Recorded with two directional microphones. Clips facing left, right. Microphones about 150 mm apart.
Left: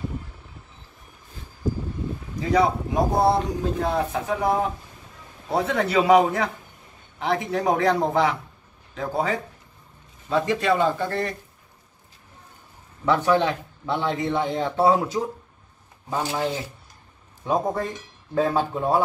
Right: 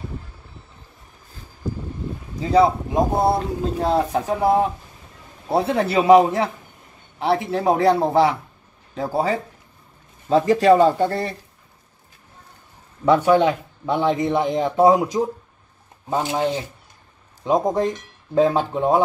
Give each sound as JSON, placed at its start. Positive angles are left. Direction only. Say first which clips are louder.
{"t": 2.5, "sound": "a man's voice", "louder": "right 4 dB", "side_deg": -25}
{"t": 13.0, "sound": "speech", "louder": "right 5 dB", "side_deg": -15}